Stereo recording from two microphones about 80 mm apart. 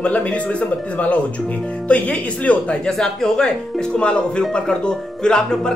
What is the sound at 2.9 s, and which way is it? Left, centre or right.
Speech, centre.